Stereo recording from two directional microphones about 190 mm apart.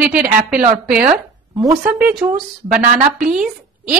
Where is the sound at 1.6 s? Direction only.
5° right (ahead or behind).